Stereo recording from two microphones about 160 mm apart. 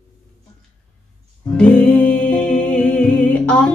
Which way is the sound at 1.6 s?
5° left (ahead or behind).